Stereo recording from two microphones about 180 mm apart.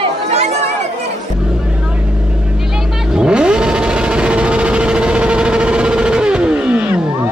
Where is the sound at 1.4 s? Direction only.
5° right (ahead or behind).